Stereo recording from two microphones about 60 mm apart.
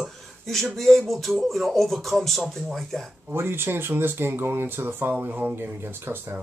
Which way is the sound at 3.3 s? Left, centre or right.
Right.